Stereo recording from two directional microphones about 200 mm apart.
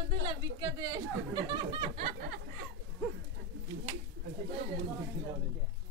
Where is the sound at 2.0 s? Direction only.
45° right (ahead or behind).